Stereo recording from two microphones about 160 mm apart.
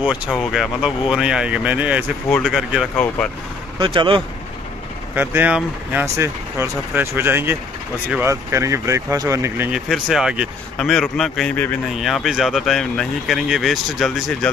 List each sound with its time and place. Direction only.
0.3 s speech: centre (ahead or behind)
3.8 s speech: 30° right (ahead or behind)
5.1 s speech: 10° right (ahead or behind)
9.7 s speech: centre (ahead or behind)
12.0 s speech: centre (ahead or behind)